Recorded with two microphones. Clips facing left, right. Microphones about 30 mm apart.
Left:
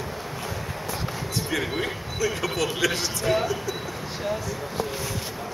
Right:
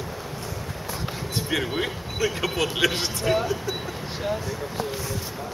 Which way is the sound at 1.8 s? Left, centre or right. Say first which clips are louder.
Right 1 dB; right.